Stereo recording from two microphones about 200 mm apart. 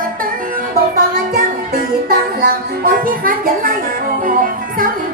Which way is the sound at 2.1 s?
50° right (ahead or behind).